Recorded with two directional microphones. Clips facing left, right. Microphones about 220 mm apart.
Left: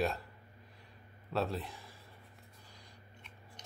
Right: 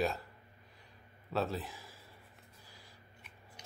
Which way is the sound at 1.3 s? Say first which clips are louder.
Even; centre (ahead or behind).